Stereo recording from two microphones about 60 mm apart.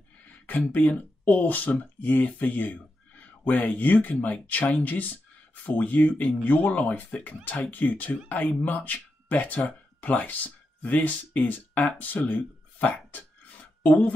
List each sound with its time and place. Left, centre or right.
0.5 s speech: left